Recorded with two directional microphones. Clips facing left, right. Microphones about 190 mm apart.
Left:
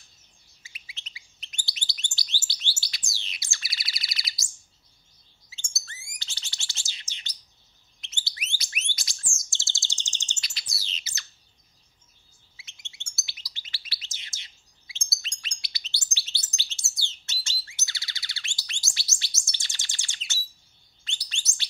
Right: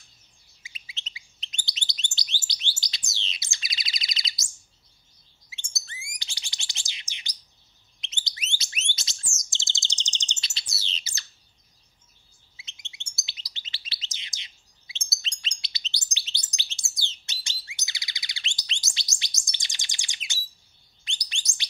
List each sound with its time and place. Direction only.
0.7 s bird: 25° right (ahead or behind)
5.6 s bird: 15° right (ahead or behind)
12.5 s bird: 20° right (ahead or behind)
21.0 s chirp: 15° right (ahead or behind)